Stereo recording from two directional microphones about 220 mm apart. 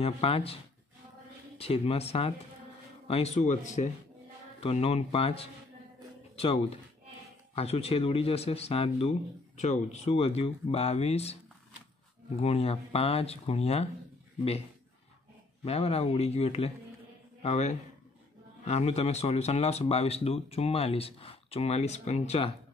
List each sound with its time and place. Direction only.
0.0 s speech: 25° left (ahead or behind)
1.6 s speech: 25° left (ahead or behind)
12.4 s speech: 30° left (ahead or behind)
15.6 s speech: 25° left (ahead or behind)